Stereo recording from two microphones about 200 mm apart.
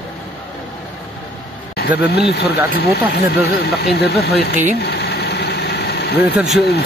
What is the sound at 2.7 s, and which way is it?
Speech, 50° left (ahead or behind).